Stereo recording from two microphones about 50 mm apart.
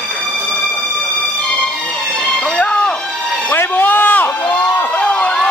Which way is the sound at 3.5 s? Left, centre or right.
Left.